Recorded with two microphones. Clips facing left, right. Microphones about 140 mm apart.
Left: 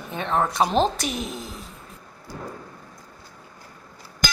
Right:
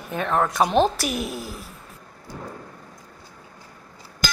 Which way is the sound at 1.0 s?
25° left (ahead or behind).